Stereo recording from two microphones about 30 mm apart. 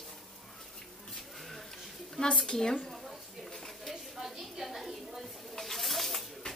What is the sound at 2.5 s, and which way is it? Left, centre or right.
Speech, centre.